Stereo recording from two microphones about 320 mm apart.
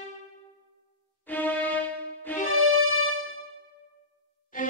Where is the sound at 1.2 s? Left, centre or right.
Centre.